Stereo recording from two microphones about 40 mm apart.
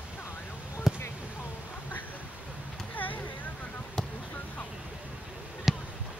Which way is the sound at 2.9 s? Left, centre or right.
Left.